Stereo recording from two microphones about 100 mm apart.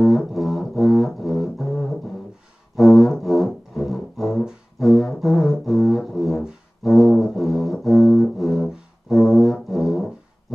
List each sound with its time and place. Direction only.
0.0 s music: centre (ahead or behind)